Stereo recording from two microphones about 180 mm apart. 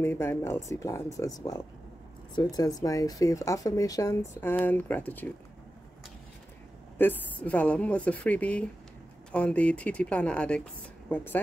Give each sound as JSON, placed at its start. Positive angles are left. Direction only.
{"t": 0.0, "sound": "speech", "side_deg": 15}
{"t": 2.3, "sound": "speech", "side_deg": 20}
{"t": 7.0, "sound": "speech", "side_deg": 10}